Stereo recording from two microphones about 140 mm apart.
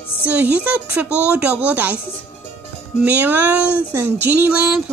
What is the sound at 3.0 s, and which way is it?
Speech, 10° right (ahead or behind).